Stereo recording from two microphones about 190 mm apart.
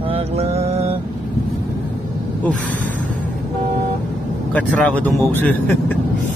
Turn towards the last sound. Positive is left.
turn(degrees=10)  # may be behind; listen again after turning